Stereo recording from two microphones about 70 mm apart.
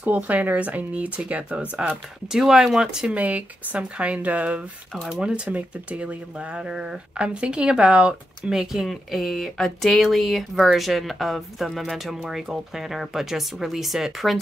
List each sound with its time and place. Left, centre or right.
0.0 s speech: right
3.2 s speech: right
8.8 s speech: centre